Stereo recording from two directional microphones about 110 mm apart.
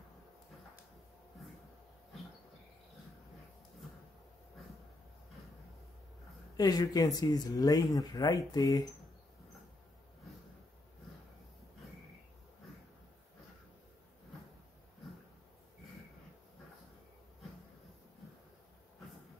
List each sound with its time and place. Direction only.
6.5 s speech: 35° left (ahead or behind)